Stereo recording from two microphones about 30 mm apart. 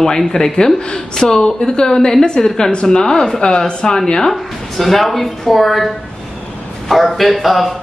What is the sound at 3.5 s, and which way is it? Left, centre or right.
Speech, left.